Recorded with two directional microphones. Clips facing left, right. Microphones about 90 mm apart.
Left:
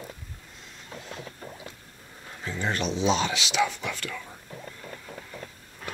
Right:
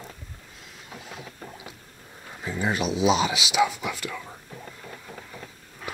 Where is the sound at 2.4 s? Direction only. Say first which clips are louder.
Right 3 dB; 10° right (ahead or behind).